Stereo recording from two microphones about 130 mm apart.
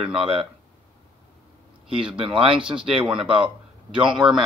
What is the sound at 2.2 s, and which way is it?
Speech, 45° right (ahead or behind).